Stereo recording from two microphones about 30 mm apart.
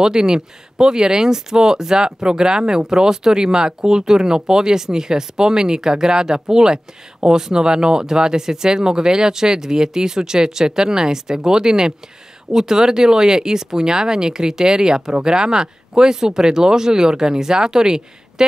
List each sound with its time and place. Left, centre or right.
0.0 s speech: right